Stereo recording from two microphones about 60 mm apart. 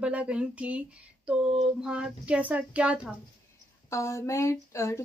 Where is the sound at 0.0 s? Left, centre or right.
Centre.